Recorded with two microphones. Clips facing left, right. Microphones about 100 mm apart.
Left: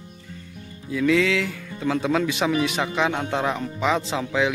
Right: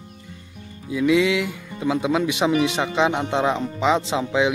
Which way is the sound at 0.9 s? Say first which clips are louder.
Right 2 dB; 15° right (ahead or behind).